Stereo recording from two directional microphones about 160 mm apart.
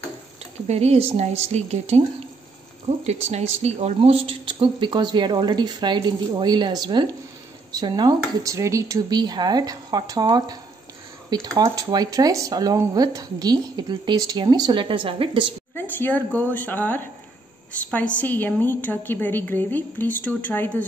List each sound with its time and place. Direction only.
0.7 s speech: 40° right (ahead or behind)
15.7 s a woman's voice: 10° left (ahead or behind)